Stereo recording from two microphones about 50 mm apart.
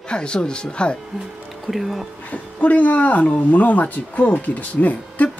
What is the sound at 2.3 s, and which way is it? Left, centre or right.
Speech, left.